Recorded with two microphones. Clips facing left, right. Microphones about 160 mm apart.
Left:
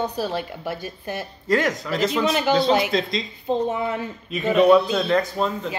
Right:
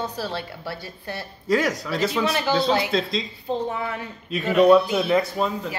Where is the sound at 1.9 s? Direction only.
15° left (ahead or behind).